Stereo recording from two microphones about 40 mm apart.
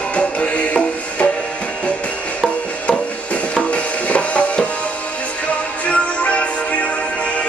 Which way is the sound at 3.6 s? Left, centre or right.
Left.